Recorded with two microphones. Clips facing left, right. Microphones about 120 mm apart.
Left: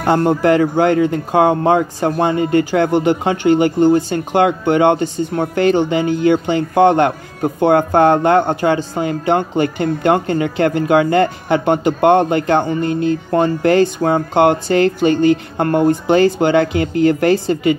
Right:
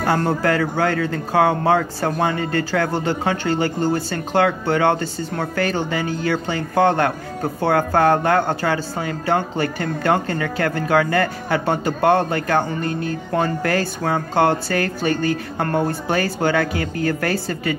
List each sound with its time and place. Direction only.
0.0 s speech: 20° left (ahead or behind)